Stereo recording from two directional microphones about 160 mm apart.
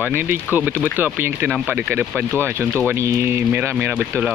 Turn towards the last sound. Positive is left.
turn(degrees=-10)  # may be behind; listen again after turning